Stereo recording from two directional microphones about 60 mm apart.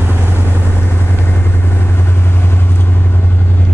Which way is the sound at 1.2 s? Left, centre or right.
Left.